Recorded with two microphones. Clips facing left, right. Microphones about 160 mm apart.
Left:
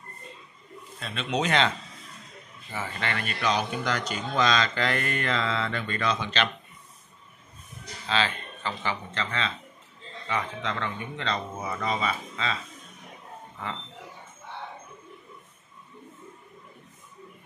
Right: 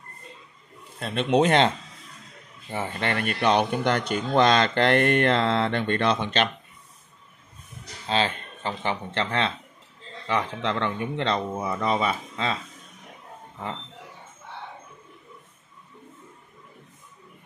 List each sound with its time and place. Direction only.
0.9 s a man's voice: 55° right (ahead or behind)
3.0 s speech: 50° right (ahead or behind)
8.1 s speech: 50° right (ahead or behind)